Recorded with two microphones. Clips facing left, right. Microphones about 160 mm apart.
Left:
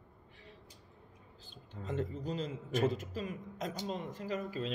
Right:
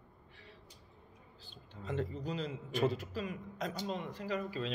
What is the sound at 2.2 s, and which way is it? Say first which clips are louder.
A man's voice: left 1 dB; 45° left (ahead or behind).